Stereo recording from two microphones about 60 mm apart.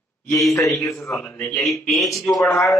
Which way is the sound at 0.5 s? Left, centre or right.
Left.